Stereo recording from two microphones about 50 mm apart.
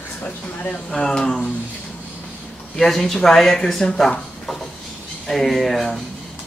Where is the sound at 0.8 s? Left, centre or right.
Centre.